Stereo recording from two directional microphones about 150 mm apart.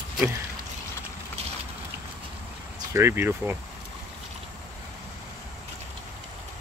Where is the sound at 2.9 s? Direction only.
15° right (ahead or behind).